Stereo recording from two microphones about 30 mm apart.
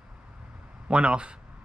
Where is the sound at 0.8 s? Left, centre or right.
Right.